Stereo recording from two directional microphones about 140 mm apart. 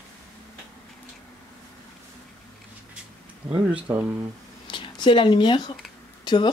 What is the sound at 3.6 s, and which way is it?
Speech, 10° right (ahead or behind).